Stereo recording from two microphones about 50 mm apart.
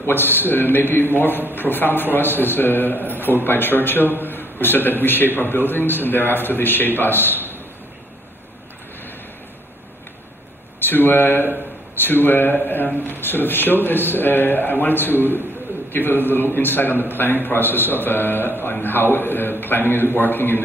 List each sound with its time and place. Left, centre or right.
0.0 s a man's voice: left
10.9 s a man's voice: left
16.5 s a man's voice: left